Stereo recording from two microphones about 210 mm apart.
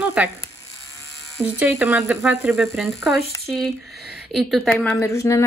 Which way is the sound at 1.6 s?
10° right (ahead or behind).